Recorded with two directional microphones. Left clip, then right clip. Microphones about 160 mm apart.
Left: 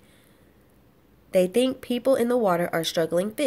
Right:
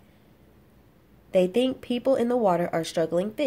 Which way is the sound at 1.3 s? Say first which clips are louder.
Left 1 dB; 10° left (ahead or behind).